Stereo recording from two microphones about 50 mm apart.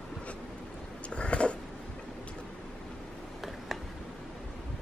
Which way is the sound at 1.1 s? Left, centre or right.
Left.